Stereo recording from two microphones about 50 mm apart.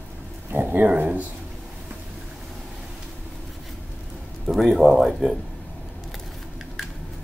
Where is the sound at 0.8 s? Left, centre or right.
Right.